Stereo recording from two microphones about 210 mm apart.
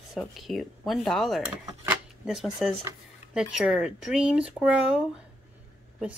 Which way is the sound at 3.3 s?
5° right (ahead or behind).